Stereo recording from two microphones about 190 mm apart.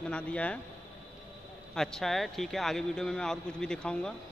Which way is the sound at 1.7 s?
5° left (ahead or behind).